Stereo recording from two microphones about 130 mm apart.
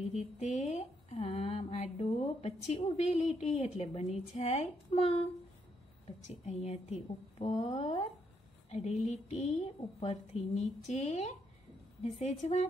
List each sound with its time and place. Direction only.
0.1 s speech: 65° left (ahead or behind)
6.2 s a woman's voice: 60° left (ahead or behind)
8.6 s a woman's voice: 60° left (ahead or behind)